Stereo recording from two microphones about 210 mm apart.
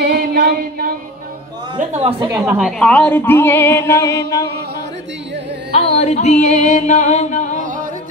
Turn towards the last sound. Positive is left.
turn(degrees=35)  # may be behind; listen again after turning